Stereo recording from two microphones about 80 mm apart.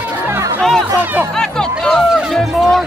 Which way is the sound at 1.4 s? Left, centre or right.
Centre.